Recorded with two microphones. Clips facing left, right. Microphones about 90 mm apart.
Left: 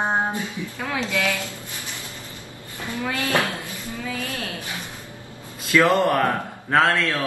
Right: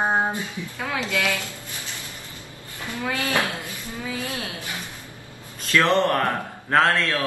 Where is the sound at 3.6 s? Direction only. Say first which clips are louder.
Left 1 dB; 20° right (ahead or behind).